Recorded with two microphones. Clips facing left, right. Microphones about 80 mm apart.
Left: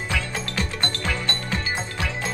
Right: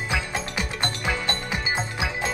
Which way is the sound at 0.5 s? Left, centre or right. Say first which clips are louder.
Left 1 dB; centre.